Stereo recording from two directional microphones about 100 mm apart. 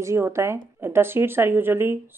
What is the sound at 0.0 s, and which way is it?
Speech, 30° right (ahead or behind).